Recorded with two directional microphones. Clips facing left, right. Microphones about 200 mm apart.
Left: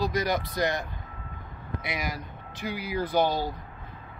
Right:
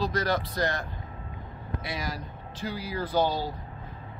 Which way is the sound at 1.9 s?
15° left (ahead or behind).